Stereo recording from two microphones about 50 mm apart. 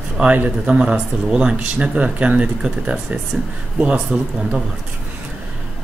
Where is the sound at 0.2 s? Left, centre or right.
Right.